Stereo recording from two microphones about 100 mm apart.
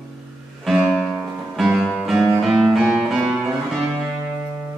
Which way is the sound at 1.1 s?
5° right (ahead or behind).